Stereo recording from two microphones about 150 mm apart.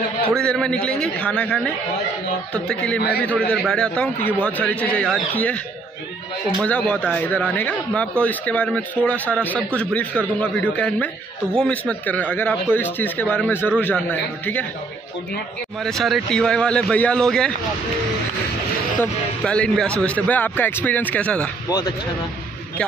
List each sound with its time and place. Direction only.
0.4 s speech: 5° left (ahead or behind)
6.6 s speech: 10° left (ahead or behind)
15.8 s a man's voice: centre (ahead or behind)
18.9 s speech: 5° left (ahead or behind)
21.6 s speech: 25° left (ahead or behind)